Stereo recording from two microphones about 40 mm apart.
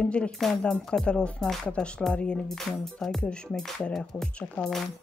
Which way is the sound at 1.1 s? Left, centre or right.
Left.